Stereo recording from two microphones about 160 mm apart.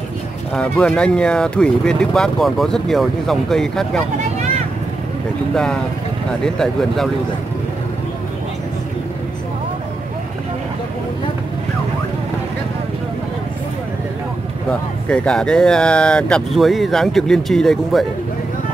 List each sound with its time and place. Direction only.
0.6 s speech: 5° left (ahead or behind)
6.4 s speech: 5° left (ahead or behind)
14.7 s speech: 5° left (ahead or behind)